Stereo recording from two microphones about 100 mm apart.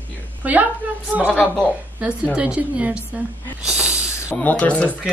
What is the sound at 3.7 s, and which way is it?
Snake, 10° right (ahead or behind).